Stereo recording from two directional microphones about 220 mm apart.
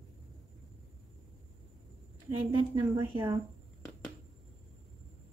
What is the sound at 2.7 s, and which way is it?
Speech, 20° right (ahead or behind).